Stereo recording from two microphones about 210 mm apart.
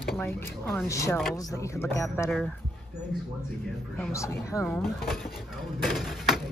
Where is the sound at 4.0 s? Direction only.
15° left (ahead or behind).